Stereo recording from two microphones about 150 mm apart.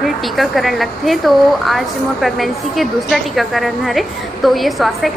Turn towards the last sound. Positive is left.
turn(degrees=0)  # may be behind; listen again after turning